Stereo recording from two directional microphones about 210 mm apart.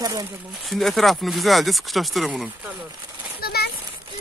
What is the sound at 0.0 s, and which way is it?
Speech, 20° right (ahead or behind).